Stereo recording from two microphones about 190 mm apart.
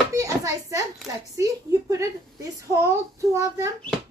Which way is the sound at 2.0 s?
15° right (ahead or behind).